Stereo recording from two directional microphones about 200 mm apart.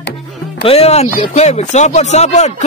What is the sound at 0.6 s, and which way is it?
Speech, 30° left (ahead or behind).